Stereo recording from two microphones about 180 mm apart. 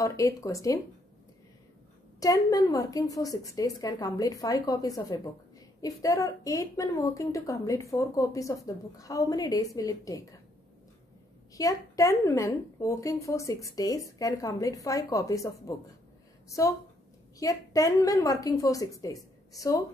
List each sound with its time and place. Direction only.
0.0 s a woman's voice: 20° left (ahead or behind)
2.1 s a woman's voice: 20° left (ahead or behind)
11.5 s a woman's voice: 20° left (ahead or behind)